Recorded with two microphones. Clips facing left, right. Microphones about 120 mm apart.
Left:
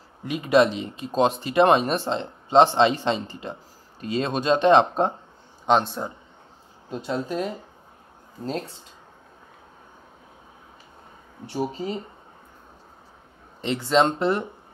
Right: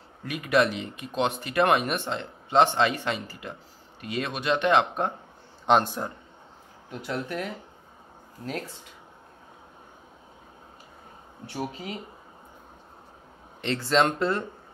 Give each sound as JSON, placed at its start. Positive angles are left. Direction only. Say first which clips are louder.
{"t": 0.2, "sound": "speech", "louder": "left 5 dB", "side_deg": 25}
{"t": 6.0, "sound": "a man's voice", "louder": "left 2 dB", "side_deg": 10}
{"t": 6.9, "sound": "speech", "louder": "left 4 dB", "side_deg": 25}
{"t": 11.6, "sound": "speech", "louder": "left 6 dB", "side_deg": 35}
{"t": 13.9, "sound": "speech", "louder": "left 3 dB", "side_deg": 25}